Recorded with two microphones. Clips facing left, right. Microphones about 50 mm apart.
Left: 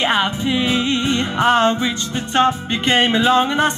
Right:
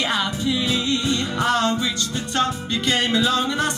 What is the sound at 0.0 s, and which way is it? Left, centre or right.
Music, left.